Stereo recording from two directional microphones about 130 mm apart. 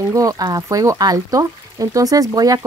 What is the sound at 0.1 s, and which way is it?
Speech, 25° right (ahead or behind).